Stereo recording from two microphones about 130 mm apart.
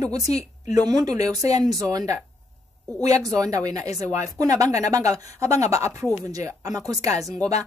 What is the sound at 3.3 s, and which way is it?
Speech, 25° right (ahead or behind).